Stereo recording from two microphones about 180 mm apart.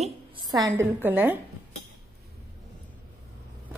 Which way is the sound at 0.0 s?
25° right (ahead or behind).